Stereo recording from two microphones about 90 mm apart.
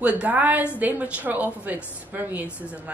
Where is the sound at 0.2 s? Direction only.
20° right (ahead or behind).